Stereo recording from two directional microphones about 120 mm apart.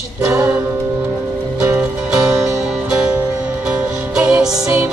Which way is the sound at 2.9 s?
10° right (ahead or behind).